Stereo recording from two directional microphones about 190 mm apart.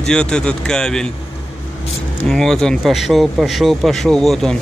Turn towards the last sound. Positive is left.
turn(degrees=0)  # may be behind; listen again after turning